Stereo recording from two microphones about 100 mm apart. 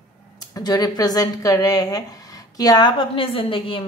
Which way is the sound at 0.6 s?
40° left (ahead or behind).